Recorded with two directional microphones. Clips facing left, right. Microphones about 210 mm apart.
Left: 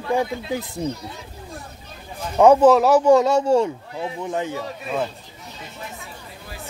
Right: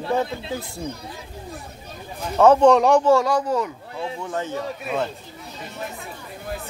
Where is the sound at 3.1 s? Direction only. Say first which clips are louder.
Left 3 dB; 20° left (ahead or behind).